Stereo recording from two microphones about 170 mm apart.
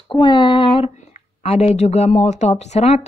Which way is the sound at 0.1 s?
30° left (ahead or behind).